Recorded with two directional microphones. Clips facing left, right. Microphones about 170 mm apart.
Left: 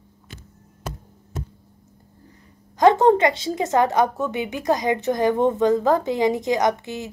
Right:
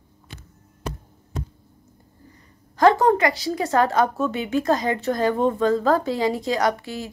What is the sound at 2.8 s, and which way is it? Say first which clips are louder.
A woman's voice: left 2 dB; 20° left (ahead or behind).